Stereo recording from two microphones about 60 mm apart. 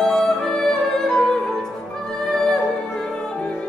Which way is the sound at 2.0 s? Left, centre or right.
Centre.